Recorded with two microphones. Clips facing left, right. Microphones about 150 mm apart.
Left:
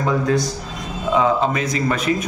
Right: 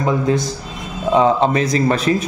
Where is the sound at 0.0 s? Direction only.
25° right (ahead or behind).